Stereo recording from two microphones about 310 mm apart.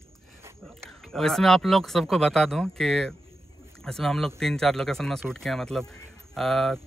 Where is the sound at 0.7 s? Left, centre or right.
Centre.